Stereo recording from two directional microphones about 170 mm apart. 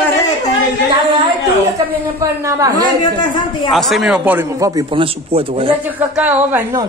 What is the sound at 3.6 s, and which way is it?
A man's voice, centre (ahead or behind).